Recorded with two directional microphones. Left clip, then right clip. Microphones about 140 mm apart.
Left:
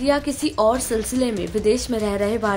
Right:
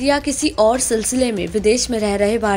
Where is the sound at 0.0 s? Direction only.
20° right (ahead or behind).